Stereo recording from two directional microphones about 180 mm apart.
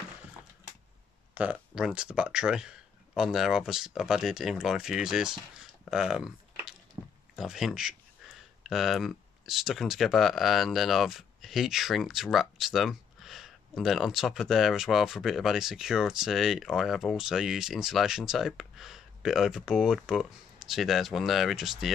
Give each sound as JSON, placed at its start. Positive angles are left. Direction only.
{"t": 1.3, "sound": "speech", "side_deg": -5}
{"t": 7.0, "sound": "a sound", "side_deg": -25}
{"t": 7.3, "sound": "speech", "side_deg": -5}